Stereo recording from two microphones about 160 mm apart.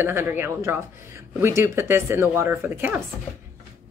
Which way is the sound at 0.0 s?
15° right (ahead or behind).